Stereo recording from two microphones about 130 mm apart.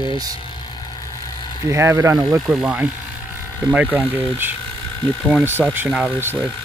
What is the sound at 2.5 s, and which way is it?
Speech, 10° right (ahead or behind).